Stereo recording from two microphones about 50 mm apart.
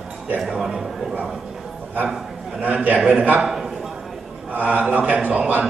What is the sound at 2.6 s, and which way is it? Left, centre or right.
Speech, right.